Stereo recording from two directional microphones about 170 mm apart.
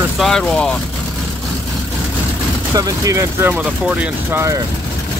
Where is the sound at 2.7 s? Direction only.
20° right (ahead or behind).